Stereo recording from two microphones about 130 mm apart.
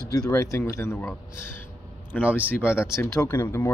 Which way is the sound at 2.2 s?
10° right (ahead or behind).